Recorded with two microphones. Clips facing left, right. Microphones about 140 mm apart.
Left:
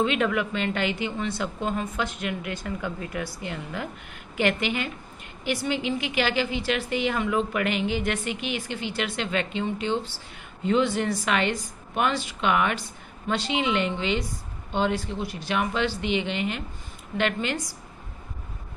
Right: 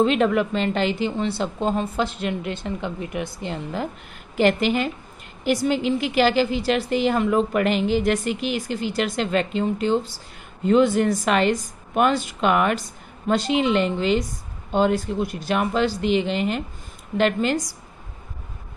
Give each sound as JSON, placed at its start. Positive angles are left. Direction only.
{"t": 0.0, "sound": "a woman's voice", "side_deg": -35}